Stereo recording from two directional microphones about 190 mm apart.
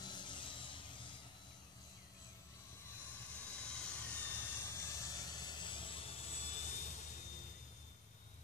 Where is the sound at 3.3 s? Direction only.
5° left (ahead or behind); by 6.8 s 35° left (ahead or behind).